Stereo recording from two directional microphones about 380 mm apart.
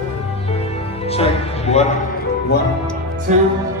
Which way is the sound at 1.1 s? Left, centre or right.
Centre.